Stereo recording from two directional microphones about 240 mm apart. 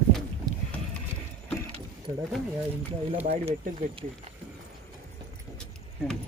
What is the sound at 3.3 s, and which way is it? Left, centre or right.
Speech, right.